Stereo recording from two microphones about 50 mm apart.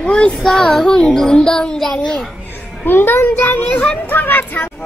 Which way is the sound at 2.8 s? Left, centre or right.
Left.